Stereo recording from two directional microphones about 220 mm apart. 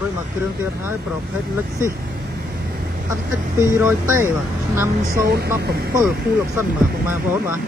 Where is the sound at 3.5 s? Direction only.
10° right (ahead or behind).